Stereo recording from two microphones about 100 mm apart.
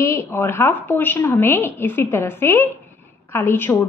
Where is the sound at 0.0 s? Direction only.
30° left (ahead or behind).